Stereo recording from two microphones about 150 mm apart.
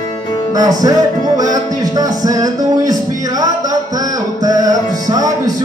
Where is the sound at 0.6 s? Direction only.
25° right (ahead or behind).